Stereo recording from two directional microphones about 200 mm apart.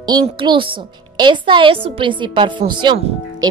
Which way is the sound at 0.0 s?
20° right (ahead or behind).